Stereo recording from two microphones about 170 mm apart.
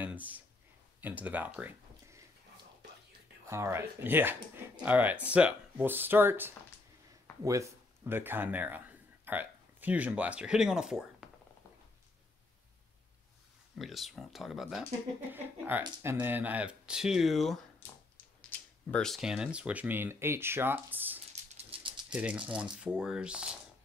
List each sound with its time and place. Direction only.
0.0 s a sound: 10° right (ahead or behind)
1.0 s speech: 10° right (ahead or behind)
3.4 s speech: 15° right (ahead or behind)
13.7 s speech: centre (ahead or behind)
21.5 s rattle: 30° right (ahead or behind)
22.1 s speech: 5° right (ahead or behind)